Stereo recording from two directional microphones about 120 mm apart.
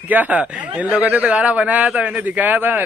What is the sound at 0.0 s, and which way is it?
Speech, 15° right (ahead or behind).